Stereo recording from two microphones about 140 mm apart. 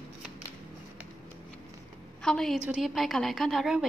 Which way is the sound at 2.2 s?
5° left (ahead or behind).